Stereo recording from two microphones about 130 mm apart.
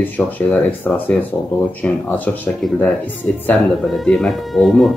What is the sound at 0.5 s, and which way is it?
Speech, 15° left (ahead or behind).